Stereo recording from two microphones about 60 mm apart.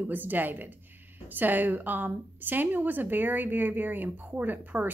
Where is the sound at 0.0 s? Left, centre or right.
Right.